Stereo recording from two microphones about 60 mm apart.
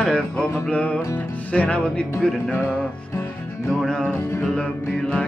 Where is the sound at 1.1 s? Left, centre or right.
Left.